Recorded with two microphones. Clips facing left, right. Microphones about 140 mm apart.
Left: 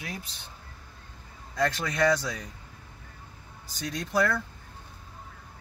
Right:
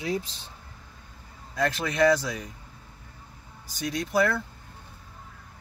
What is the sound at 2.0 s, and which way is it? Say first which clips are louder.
Speech: right 3 dB; 5° right (ahead or behind).